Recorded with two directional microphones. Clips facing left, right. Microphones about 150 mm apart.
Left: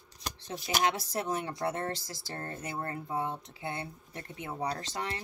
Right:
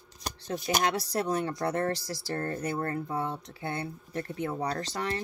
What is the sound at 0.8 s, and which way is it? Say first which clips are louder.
Speech: right 2 dB; 20° left (ahead or behind).